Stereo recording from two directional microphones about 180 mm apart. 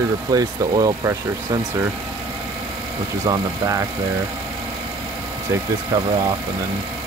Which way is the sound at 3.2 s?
20° right (ahead or behind).